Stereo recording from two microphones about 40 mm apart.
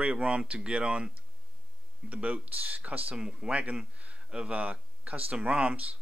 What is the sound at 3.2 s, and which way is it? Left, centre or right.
Speech, right.